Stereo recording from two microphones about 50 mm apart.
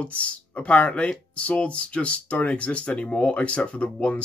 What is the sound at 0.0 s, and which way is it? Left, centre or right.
Speech, left.